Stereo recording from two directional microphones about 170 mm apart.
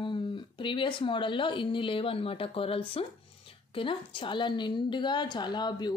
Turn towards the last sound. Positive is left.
turn(degrees=25)  # may be behind; listen again after turning